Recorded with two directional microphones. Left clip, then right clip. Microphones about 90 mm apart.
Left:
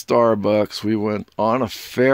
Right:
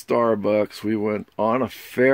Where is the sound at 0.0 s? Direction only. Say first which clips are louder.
Left 4 dB; 35° left (ahead or behind).